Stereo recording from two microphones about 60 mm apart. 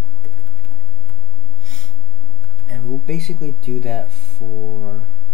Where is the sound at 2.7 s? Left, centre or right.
Centre.